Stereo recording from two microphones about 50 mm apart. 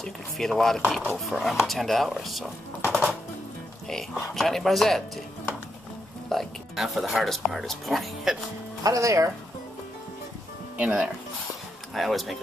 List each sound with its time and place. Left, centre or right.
0.0 s speech: centre
2.9 s music: centre
4.3 s speech: centre
6.2 s speech: centre
8.9 s speech: right
10.8 s speech: right
11.9 s speech: centre